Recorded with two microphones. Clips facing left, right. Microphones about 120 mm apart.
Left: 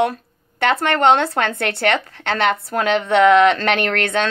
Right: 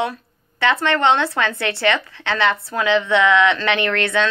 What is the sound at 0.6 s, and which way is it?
A woman's voice, 50° left (ahead or behind).